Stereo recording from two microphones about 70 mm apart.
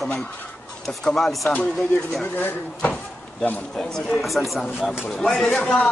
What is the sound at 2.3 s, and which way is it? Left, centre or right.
Speech, left.